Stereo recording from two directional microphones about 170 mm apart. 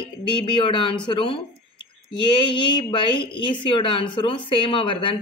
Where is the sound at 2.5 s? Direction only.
30° left (ahead or behind).